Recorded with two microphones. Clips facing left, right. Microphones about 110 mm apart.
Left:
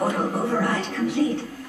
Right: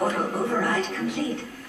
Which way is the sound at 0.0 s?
10° left (ahead or behind).